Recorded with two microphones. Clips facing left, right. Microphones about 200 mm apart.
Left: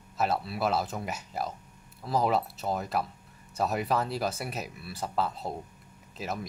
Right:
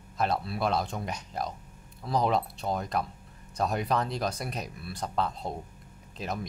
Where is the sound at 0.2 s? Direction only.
5° left (ahead or behind).